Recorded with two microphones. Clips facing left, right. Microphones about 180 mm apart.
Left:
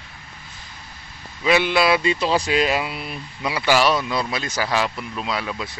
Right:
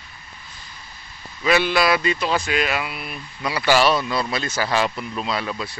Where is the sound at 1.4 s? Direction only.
20° left (ahead or behind).